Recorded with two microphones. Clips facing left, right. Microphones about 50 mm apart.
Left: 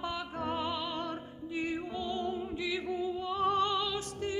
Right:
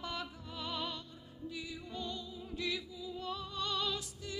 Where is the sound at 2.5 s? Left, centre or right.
Left.